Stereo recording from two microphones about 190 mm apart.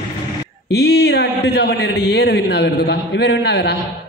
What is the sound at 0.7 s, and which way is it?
A man's voice, 60° left (ahead or behind).